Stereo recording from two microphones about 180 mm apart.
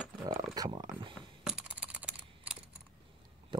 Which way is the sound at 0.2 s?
20° right (ahead or behind).